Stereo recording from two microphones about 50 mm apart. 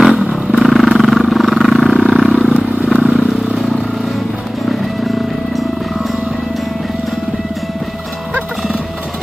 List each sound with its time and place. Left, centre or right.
0.3 s vehicle: centre
2.4 s vehicle: centre
3.2 s vehicle: centre